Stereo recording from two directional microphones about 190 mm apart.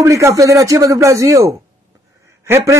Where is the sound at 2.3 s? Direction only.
15° right (ahead or behind).